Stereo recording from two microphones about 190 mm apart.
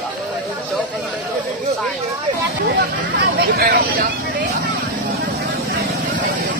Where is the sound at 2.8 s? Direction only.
60° right (ahead or behind).